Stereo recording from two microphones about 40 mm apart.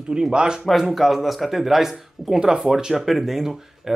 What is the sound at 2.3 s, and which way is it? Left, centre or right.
Speech, centre.